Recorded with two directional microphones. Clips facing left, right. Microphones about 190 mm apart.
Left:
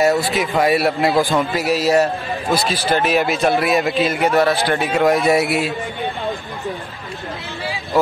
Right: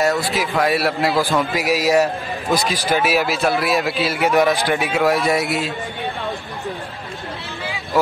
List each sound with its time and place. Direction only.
0.0 s a man's voice: centre (ahead or behind)
1.5 s a man's voice: 10° right (ahead or behind)
4.3 s a man's voice: 15° right (ahead or behind)
4.9 s a man's voice: centre (ahead or behind)